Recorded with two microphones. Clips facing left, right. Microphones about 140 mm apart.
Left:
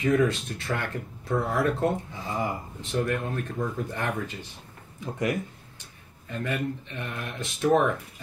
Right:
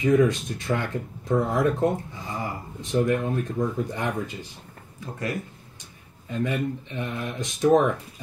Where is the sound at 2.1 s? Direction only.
20° left (ahead or behind).